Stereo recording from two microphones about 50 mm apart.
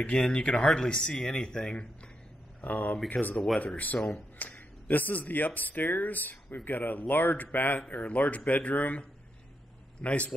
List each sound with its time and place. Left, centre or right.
0.0 s speech: centre
2.6 s speech: left
10.0 s a man's voice: left